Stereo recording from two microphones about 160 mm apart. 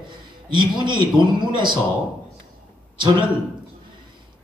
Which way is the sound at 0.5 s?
30° right (ahead or behind).